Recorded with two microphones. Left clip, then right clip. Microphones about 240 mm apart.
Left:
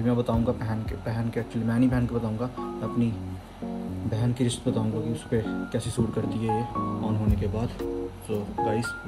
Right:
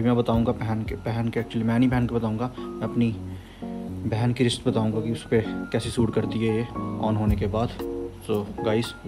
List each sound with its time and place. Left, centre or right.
0.0 s speech: right
4.1 s speech: right
7.2 s speech: centre
8.3 s speech: right